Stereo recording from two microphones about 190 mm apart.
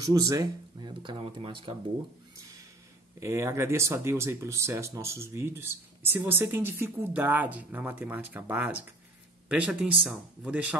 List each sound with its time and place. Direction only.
0.0 s speech: 20° right (ahead or behind)
3.2 s speech: 15° right (ahead or behind)